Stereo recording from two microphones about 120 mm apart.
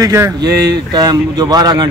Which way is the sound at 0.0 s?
25° right (ahead or behind).